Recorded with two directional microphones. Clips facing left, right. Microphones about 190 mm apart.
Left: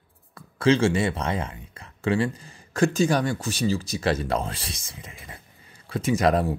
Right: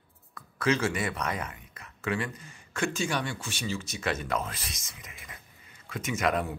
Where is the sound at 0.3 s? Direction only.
30° left (ahead or behind).